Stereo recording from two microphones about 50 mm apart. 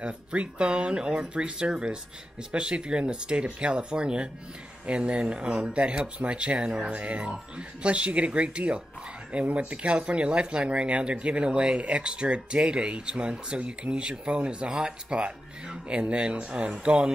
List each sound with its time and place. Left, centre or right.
0.0 s speech: right